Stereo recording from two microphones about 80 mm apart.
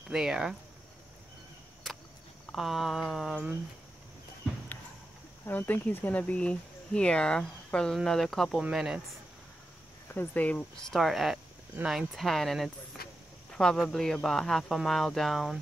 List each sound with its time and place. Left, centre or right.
0.1 s speech: centre
2.5 s speech: centre
5.5 s speech: left; by 8.5 s centre
8.5 s speech: centre
10.0 s speech: left
10.9 s speech: centre